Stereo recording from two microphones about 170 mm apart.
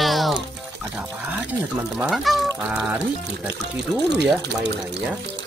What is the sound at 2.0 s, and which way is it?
Speech, centre (ahead or behind).